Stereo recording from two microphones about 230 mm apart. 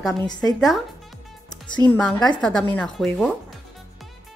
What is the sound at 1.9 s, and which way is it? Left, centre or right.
Speech, centre.